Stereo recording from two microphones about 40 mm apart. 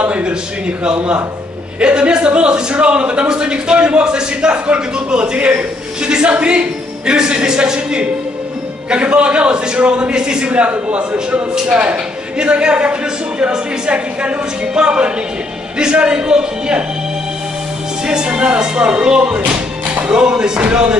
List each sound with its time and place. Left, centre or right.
0.0 s a sound: right
1.8 s speech: right
7.1 s speech: right
10.5 s a man's voice: right
12.4 s speech: right
18.0 s speech: right